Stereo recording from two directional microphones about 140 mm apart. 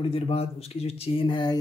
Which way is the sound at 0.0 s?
45° left (ahead or behind).